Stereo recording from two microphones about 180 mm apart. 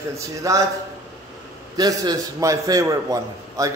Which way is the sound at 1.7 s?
20° right (ahead or behind).